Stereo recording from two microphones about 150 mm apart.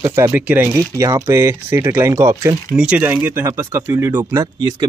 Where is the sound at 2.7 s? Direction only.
5° right (ahead or behind); by 4.8 s 25° right (ahead or behind).